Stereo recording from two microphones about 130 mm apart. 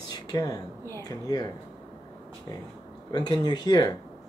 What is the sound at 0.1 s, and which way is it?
Speech, 30° left (ahead or behind).